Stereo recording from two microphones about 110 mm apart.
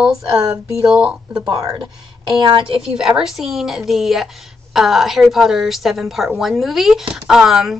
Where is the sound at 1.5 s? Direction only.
35° right (ahead or behind).